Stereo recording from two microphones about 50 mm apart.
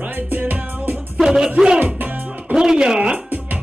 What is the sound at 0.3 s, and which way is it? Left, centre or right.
Music, right.